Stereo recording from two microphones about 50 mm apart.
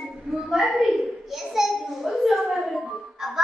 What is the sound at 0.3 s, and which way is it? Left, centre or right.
Speech, centre.